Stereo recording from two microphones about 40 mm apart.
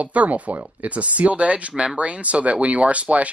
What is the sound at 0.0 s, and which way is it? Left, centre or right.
Speech, right.